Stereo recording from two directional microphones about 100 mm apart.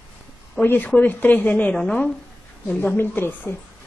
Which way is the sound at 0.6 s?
15° left (ahead or behind).